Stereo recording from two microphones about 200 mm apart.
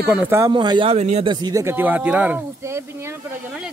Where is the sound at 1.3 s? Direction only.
20° right (ahead or behind).